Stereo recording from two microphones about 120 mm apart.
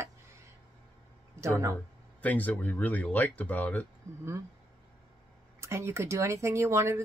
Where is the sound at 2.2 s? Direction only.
15° left (ahead or behind).